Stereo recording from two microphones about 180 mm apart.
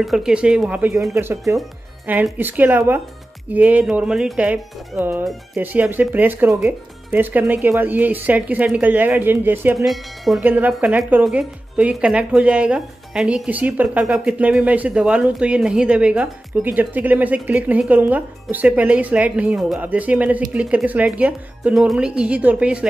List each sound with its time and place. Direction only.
0.0 s speech: centre (ahead or behind)
9.8 s speech: centre (ahead or behind)